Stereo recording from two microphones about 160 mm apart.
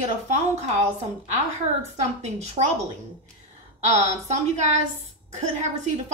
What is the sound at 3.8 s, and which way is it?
A woman's voice, 45° right (ahead or behind).